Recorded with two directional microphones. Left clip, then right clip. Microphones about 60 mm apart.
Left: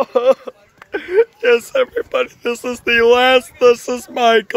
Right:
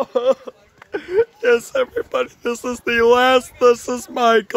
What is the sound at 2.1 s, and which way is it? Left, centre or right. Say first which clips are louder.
Speech: left 3 dB; right.